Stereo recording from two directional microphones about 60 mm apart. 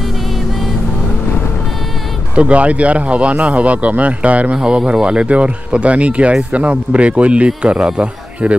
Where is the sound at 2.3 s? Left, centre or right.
Right.